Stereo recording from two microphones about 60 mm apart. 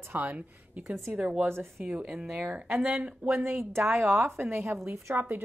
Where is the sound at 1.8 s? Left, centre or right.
Right.